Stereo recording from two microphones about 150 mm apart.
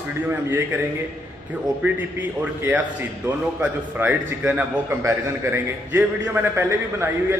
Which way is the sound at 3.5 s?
10° right (ahead or behind).